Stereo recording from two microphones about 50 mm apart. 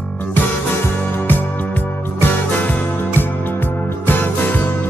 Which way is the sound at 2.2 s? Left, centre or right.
Left.